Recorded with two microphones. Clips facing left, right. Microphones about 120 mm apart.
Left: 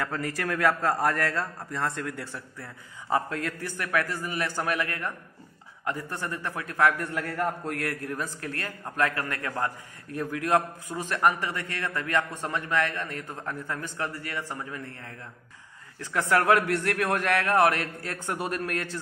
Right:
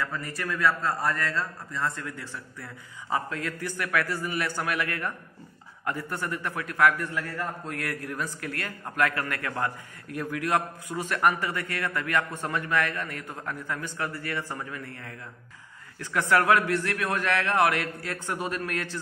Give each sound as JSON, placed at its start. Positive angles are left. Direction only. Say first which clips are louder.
{"t": 0.0, "sound": "a man's voice", "louder": "left 2 dB", "side_deg": 70}
{"t": 3.1, "sound": "a man's voice", "louder": "left 2 dB", "side_deg": 45}
{"t": 7.0, "sound": "a man's voice", "louder": "left 2 dB", "side_deg": 50}
{"t": 8.1, "sound": "a man's voice", "louder": "even", "side_deg": 35}
{"t": 10.1, "sound": "a man's voice", "louder": "left 2 dB", "side_deg": 35}
{"t": 16.0, "sound": "a man's voice", "louder": "right 1 dB", "side_deg": 35}
{"t": 16.6, "sound": "a man's voice", "louder": "left 1 dB", "side_deg": 55}